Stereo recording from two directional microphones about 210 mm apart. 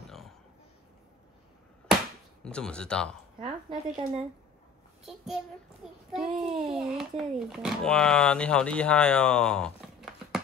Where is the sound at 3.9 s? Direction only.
35° right (ahead or behind).